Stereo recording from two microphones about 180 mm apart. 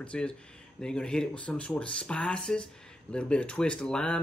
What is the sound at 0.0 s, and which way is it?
Speech, 5° left (ahead or behind).